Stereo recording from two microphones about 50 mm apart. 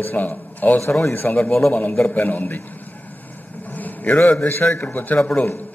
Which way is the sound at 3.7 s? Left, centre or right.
Left.